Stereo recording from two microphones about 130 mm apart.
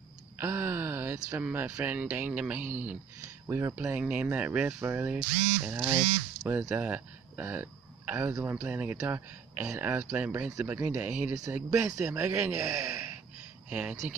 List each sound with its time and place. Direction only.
0.4 s speech: 15° right (ahead or behind)
3.7 s speech: 10° right (ahead or behind)
13.7 s speech: 10° right (ahead or behind)